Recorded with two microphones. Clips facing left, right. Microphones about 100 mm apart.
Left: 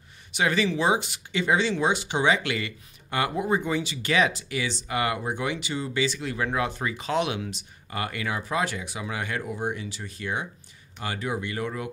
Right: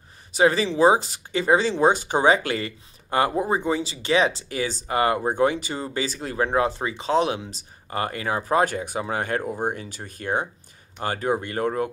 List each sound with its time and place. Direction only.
0.3 s speech: 35° right (ahead or behind)